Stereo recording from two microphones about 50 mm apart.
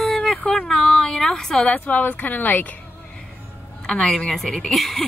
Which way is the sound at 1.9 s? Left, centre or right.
Left.